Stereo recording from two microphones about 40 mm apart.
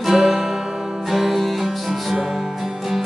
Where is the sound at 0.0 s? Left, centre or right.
Centre.